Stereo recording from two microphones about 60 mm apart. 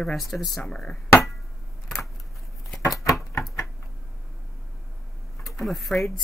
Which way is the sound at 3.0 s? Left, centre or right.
Left.